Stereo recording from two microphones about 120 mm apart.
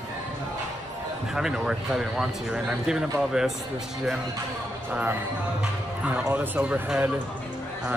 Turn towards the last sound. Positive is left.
turn(degrees=-15)  # may be behind; listen again after turning